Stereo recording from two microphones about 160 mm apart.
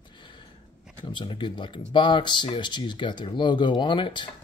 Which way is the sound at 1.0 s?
30° left (ahead or behind).